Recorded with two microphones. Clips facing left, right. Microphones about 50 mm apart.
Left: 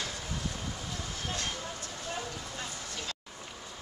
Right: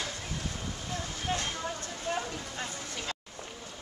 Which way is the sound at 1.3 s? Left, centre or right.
Right.